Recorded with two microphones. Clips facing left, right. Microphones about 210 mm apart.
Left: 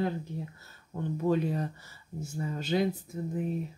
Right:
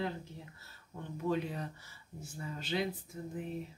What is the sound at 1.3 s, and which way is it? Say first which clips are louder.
Speech: left 6 dB; 45° left (ahead or behind).